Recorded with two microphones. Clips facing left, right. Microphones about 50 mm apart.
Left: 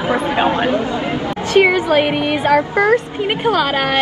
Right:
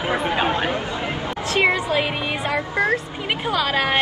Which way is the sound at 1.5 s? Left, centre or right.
Left.